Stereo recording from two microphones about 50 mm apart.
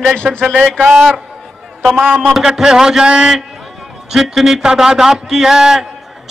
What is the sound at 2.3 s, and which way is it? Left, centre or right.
A man's voice, centre.